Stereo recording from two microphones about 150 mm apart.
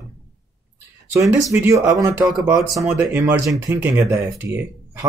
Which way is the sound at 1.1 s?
20° right (ahead or behind).